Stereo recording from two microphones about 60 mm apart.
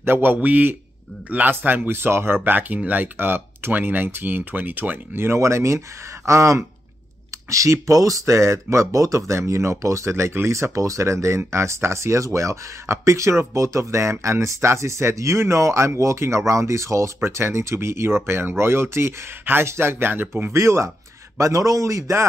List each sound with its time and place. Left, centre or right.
0.0 s speech: right
20.5 s speech: right
21.4 s speech: right